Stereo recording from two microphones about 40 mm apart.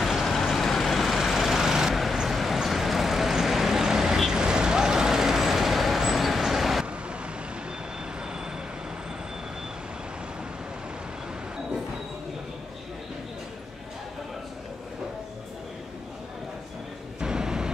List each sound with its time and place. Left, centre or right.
0.0 s vehicle: centre
17.2 s vehicle: centre